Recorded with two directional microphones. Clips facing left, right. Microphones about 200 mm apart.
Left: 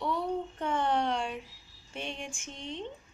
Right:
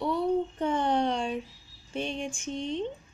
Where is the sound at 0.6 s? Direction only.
15° right (ahead or behind).